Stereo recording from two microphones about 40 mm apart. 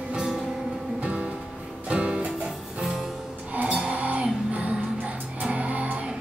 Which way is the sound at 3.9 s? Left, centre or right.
Right.